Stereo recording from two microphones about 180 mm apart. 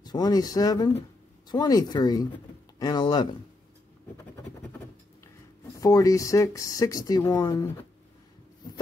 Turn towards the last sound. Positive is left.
turn(degrees=15)  # may be behind; listen again after turning